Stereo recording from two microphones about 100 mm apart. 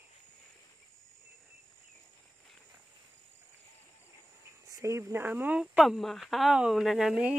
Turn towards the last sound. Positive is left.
turn(degrees=-10)  # may be behind; listen again after turning